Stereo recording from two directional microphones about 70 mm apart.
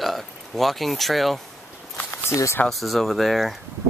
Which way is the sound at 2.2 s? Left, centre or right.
Left.